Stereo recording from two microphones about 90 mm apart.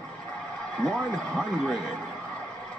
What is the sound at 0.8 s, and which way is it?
A man's voice, 10° left (ahead or behind).